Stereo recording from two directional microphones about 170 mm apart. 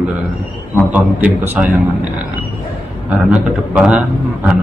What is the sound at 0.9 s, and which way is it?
Speech, 10° right (ahead or behind).